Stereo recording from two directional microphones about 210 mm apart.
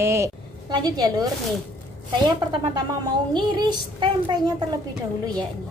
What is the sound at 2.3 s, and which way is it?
Speech, 20° right (ahead or behind).